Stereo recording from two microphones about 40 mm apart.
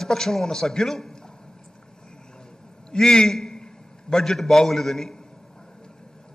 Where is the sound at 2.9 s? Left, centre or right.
Centre.